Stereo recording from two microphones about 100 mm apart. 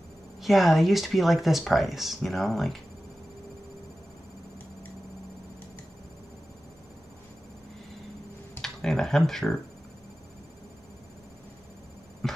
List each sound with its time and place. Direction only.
0.4 s speech: centre (ahead or behind)
8.5 s speech: 5° left (ahead or behind)